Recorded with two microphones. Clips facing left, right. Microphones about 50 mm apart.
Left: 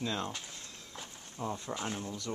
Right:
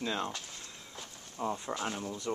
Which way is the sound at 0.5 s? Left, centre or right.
Centre.